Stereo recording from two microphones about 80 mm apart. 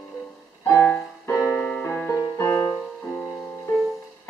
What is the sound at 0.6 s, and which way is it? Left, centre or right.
Music, left.